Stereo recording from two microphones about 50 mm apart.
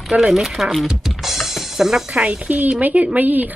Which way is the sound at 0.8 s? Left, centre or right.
Centre.